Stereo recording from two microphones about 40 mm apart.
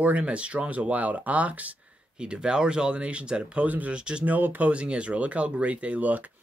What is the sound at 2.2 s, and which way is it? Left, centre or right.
Speech, right.